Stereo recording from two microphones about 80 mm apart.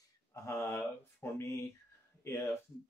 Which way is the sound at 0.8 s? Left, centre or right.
Left.